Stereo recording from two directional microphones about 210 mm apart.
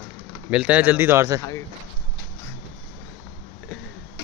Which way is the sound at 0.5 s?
5° right (ahead or behind).